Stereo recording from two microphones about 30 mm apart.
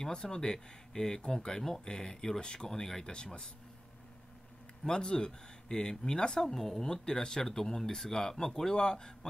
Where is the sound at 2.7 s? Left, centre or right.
Centre.